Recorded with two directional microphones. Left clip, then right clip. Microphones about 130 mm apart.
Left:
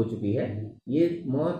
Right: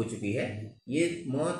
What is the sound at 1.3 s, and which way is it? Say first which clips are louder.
Mantra: left 3 dB; 20° right (ahead or behind).